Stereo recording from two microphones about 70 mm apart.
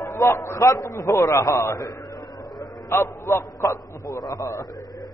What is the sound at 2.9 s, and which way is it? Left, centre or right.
A man's voice, left.